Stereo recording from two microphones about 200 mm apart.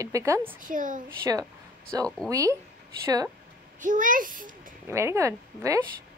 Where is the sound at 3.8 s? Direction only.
40° right (ahead or behind).